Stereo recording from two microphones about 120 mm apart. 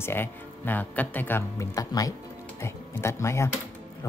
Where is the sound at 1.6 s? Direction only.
30° left (ahead or behind).